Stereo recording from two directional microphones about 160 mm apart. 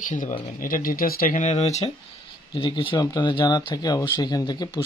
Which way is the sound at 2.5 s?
30° left (ahead or behind).